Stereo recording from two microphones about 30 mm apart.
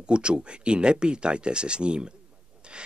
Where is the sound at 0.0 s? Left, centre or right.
Right.